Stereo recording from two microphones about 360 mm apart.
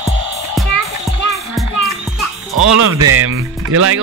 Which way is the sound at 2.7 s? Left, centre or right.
Right.